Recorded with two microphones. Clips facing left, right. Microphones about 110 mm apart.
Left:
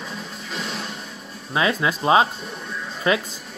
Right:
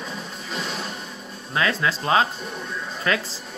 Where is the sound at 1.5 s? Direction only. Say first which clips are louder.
Left 2 dB; 20° left (ahead or behind).